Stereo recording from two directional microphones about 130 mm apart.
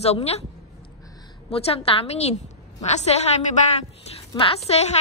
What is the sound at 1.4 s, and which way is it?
A woman's voice, 50° left (ahead or behind).